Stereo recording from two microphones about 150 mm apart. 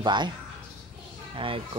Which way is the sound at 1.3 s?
35° right (ahead or behind).